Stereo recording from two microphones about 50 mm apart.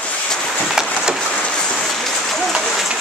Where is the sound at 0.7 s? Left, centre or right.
Centre.